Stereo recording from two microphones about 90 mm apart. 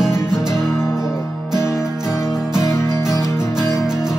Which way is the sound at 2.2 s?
35° left (ahead or behind).